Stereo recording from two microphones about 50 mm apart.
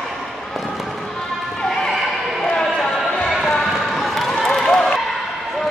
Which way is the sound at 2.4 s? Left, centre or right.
Centre.